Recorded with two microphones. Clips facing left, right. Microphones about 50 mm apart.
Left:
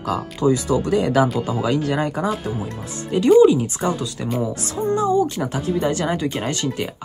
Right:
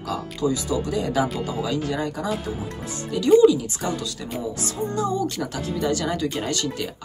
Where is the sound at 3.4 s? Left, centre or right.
Left.